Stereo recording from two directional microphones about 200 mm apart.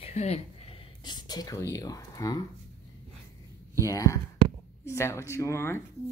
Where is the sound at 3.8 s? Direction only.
15° left (ahead or behind).